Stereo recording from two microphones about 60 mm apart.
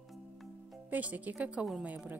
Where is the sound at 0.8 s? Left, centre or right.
Right.